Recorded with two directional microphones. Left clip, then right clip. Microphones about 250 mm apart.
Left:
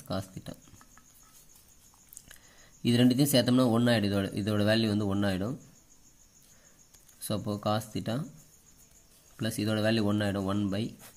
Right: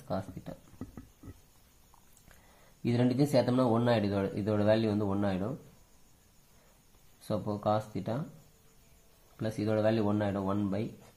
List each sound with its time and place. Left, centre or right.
2.8 s speech: left
7.2 s speech: left
9.4 s speech: left